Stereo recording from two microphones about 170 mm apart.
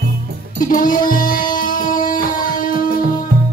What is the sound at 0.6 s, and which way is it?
Music, 50° left (ahead or behind).